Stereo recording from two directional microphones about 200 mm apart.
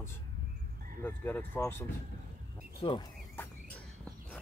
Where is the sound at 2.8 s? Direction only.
25° left (ahead or behind).